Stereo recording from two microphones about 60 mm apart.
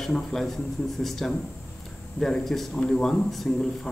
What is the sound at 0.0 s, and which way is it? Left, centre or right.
A man's voice, centre.